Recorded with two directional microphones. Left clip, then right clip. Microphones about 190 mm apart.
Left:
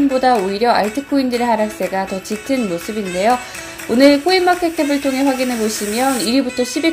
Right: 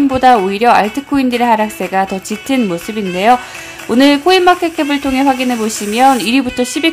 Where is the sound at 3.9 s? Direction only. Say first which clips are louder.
Right 2 dB; 20° right (ahead or behind).